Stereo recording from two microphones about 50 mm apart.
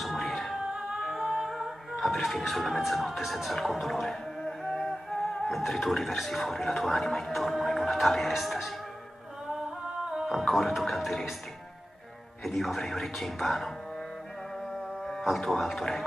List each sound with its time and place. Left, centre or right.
0.0 s music: centre
0.7 s music: centre
5.5 s a man's voice: centre
10.1 s music: centre
10.4 s a man's voice: centre
12.4 s a man's voice: centre
15.0 s speech: centre